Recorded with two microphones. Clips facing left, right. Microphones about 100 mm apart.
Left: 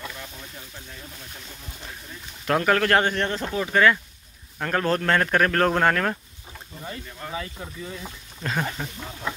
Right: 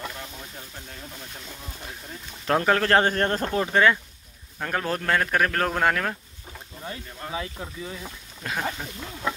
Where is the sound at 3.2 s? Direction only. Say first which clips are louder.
Right 2 dB; 45° right (ahead or behind).